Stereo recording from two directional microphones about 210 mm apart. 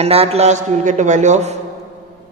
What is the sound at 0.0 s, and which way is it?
A man's voice, 30° right (ahead or behind).